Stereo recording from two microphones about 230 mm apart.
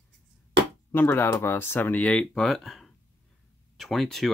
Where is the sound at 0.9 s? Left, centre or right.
Centre.